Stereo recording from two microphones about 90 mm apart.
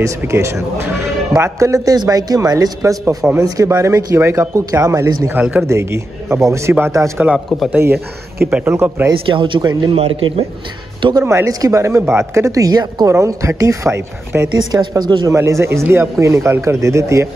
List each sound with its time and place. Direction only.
0.0 s speech: 30° right (ahead or behind)
5.3 s speech: 20° right (ahead or behind)
5.7 s speech: 30° right (ahead or behind)
8.6 s speech: 25° right (ahead or behind)
9.3 s speech: 65° right (ahead or behind)
9.6 s a man's voice: 50° right (ahead or behind)
9.9 s a man's voice: 90° right
11.1 s speech: 35° right (ahead or behind)
14.7 s speech: 55° right (ahead or behind)
15.2 s speech: 35° right (ahead or behind)